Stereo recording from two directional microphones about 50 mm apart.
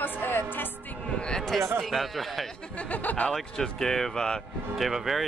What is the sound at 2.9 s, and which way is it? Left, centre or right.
Speech, left.